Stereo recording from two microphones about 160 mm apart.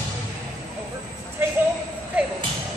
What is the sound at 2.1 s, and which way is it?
Music, 10° right (ahead or behind).